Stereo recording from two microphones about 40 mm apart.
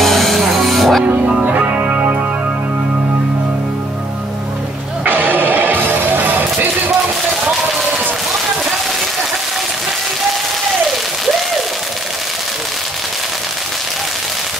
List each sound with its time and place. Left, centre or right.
0.0 s music: centre
1.4 s music: right
5.0 s music: right